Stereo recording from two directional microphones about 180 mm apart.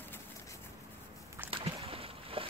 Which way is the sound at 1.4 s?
30° right (ahead or behind).